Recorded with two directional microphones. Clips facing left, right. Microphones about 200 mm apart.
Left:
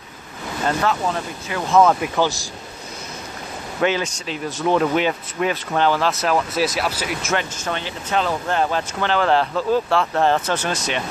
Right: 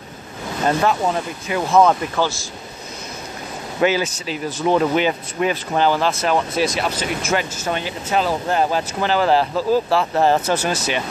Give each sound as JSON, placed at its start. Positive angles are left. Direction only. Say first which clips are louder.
{"t": 0.7, "sound": "speech", "louder": "right 3 dB", "side_deg": -20}
{"t": 1.7, "sound": "speech", "louder": "even", "side_deg": -5}
{"t": 2.0, "sound": "speech", "louder": "left 1 dB", "side_deg": 15}
{"t": 3.8, "sound": "speech", "louder": "right 2 dB", "side_deg": -5}